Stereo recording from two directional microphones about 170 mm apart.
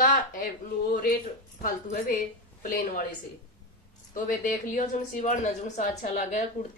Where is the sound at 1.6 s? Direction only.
55° left (ahead or behind).